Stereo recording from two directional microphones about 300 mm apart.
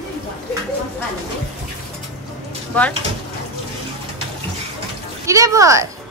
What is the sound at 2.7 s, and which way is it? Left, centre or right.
Speech, centre.